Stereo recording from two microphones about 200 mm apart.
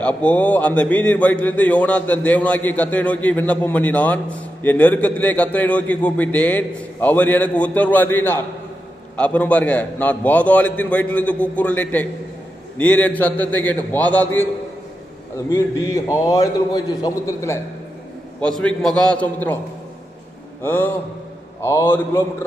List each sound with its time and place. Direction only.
0.0 s a man's voice: 5° left (ahead or behind)
15.5 s a man's voice: 15° left (ahead or behind)
20.6 s a man's voice: 10° left (ahead or behind)